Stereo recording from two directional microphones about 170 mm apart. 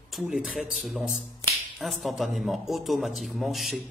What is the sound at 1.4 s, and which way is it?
Finger snapping, 20° left (ahead or behind).